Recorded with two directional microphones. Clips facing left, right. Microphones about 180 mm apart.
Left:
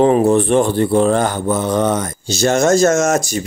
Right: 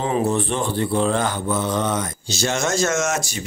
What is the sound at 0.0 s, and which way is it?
Speech, 55° left (ahead or behind).